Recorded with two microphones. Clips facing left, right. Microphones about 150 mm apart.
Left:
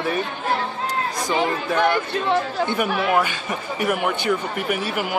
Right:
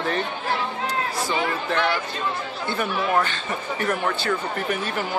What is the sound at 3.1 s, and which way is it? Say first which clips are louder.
Speech: left 2 dB; 10° left (ahead or behind).